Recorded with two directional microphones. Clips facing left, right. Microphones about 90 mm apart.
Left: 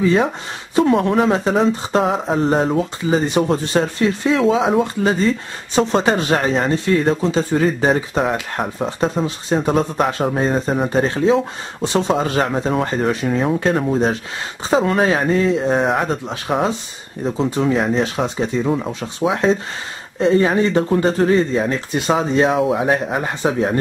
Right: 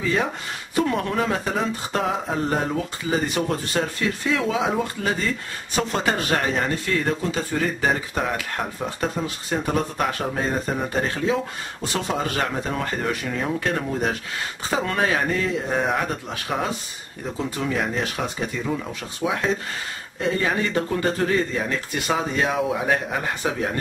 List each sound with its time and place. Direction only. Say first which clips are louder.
0.0 s speech: left 7 dB; 25° left (ahead or behind)